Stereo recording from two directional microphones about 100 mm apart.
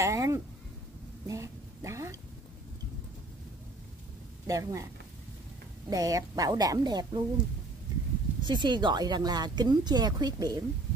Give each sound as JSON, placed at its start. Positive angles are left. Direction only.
{"t": 0.0, "sound": "a woman's voice", "side_deg": -30}
{"t": 4.5, "sound": "a woman's voice", "side_deg": -35}
{"t": 5.9, "sound": "a woman's voice", "side_deg": -35}
{"t": 8.4, "sound": "speech", "side_deg": -50}